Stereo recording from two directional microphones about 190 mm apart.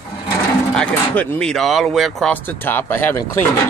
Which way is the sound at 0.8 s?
5° left (ahead or behind).